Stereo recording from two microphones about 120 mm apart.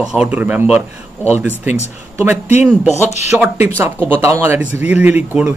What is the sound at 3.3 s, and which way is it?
A man's voice, 15° right (ahead or behind).